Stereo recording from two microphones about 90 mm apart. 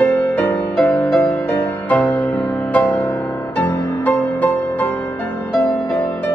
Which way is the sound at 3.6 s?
20° left (ahead or behind).